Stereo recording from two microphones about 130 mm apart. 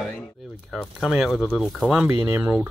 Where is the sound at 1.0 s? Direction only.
5° right (ahead or behind).